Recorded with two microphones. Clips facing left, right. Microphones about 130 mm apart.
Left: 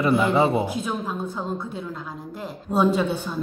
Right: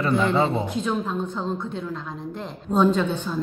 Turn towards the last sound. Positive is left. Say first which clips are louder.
# even
turn(degrees=10)  # may be behind; listen again after turning